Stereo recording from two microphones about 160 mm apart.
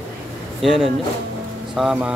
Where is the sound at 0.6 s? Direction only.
5° right (ahead or behind).